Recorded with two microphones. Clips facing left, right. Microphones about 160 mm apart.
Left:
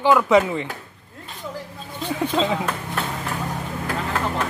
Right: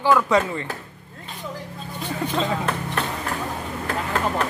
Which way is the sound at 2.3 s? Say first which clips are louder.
Left 1 dB; 10° left (ahead or behind).